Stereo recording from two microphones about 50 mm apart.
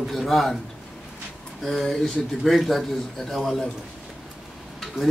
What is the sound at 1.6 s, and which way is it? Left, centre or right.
Speech, centre.